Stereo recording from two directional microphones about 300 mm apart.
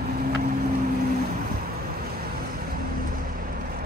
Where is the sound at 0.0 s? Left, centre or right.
Right.